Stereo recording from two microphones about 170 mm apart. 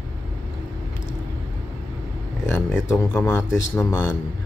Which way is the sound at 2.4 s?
10° left (ahead or behind).